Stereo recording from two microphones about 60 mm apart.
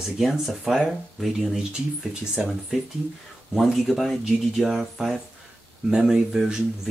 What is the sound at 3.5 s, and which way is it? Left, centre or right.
Speech, centre.